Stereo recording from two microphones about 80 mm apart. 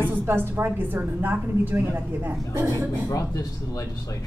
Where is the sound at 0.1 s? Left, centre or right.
Right.